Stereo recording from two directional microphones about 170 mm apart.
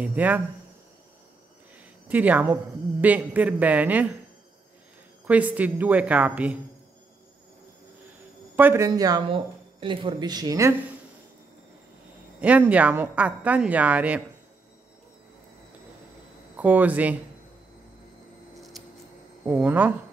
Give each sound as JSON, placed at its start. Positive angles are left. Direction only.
{"t": 0.0, "sound": "a woman's voice", "side_deg": -10}
{"t": 2.0, "sound": "a woman's voice", "side_deg": -10}
{"t": 5.2, "sound": "a woman's voice", "side_deg": -10}
{"t": 8.5, "sound": "speech", "side_deg": -15}
{"t": 12.4, "sound": "a woman's voice", "side_deg": -10}
{"t": 16.5, "sound": "a woman's voice", "side_deg": -10}
{"t": 18.8, "sound": "a sound", "side_deg": 0}
{"t": 19.4, "sound": "a woman's voice", "side_deg": -10}